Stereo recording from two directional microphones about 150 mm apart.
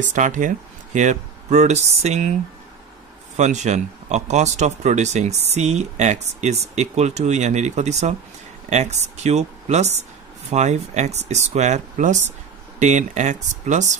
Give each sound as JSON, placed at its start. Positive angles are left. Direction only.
{"t": 0.1, "sound": "speech", "side_deg": -55}
{"t": 3.3, "sound": "speech", "side_deg": -50}